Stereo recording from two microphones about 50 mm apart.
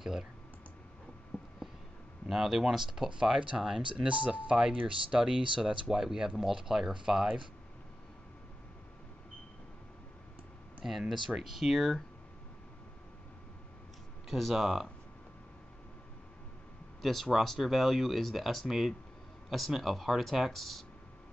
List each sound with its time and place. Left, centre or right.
2.2 s speech: centre
3.9 s speech: right
4.3 s speech: centre
10.8 s speech: centre
14.3 s speech: centre
17.0 s speech: centre